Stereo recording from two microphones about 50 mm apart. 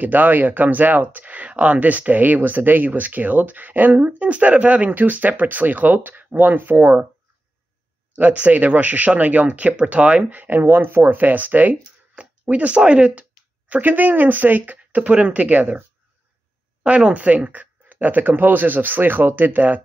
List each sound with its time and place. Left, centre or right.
0.0 s speech: right
8.2 s speech: right
16.8 s speech: right